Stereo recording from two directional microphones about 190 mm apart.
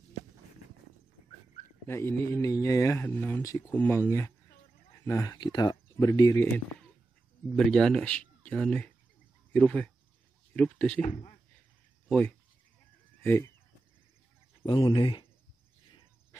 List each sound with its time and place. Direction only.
1.9 s speech: 10° left (ahead or behind)
5.0 s speech: 15° left (ahead or behind)
7.5 s speech: centre (ahead or behind)
11.0 s speech: 35° left (ahead or behind)
12.1 s speech: 5° left (ahead or behind)
14.6 s speech: 25° left (ahead or behind)